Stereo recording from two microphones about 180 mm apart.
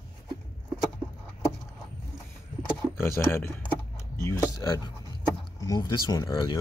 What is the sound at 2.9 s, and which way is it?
Speech, 15° left (ahead or behind).